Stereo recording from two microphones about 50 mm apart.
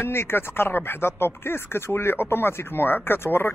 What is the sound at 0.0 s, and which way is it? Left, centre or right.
Speech, left.